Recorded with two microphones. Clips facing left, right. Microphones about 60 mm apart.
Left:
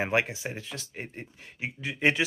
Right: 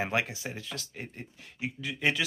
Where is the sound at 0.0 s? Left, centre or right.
Left.